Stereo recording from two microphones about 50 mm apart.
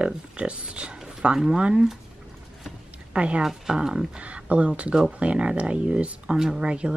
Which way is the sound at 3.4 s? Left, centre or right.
Centre.